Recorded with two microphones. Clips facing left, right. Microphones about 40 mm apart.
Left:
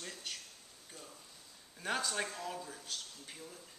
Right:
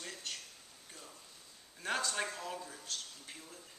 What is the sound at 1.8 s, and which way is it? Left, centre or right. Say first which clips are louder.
A man's voice: even; centre.